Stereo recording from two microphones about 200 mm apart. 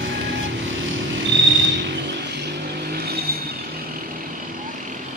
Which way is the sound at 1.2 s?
65° right (ahead or behind).